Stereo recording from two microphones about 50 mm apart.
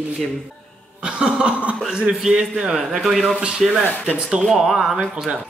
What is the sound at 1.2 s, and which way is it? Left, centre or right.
Speech, right.